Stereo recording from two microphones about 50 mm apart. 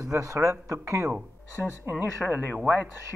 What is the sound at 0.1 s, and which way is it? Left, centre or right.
Speech, right.